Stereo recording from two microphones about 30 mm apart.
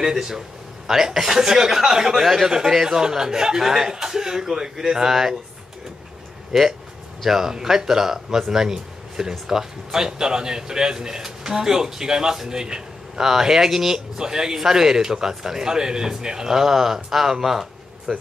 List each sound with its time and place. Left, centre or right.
0.0 s a man's voice: centre
6.5 s speech: centre
7.2 s a man's voice: centre
14.1 s a man's voice: right